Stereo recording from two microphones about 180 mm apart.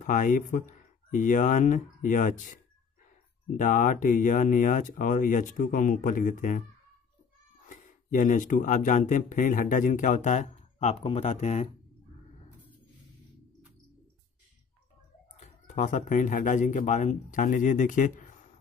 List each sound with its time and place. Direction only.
0.0 s speech: 45° left (ahead or behind)
7.6 s speech: 45° left (ahead or behind)
15.4 s speech: 40° left (ahead or behind)